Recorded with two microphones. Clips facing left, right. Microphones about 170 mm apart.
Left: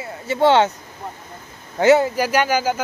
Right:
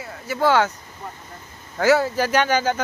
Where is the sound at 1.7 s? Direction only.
20° left (ahead or behind).